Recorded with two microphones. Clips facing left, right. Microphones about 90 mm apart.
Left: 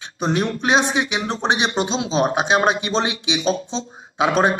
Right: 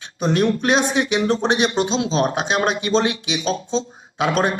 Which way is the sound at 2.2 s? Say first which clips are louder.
Left 6 dB; 20° left (ahead or behind).